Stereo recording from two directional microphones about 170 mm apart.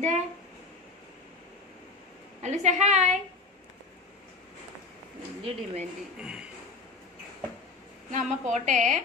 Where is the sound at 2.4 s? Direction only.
45° right (ahead or behind).